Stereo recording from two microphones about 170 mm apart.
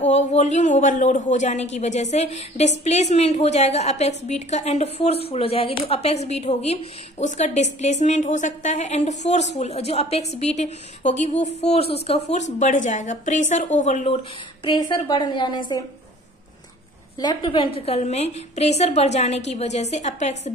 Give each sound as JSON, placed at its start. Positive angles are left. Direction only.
{"t": 0.0, "sound": "a man's voice", "side_deg": 40}
{"t": 17.2, "sound": "a woman's voice", "side_deg": 25}